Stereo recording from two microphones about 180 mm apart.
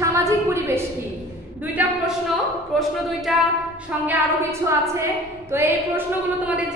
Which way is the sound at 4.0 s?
10° right (ahead or behind).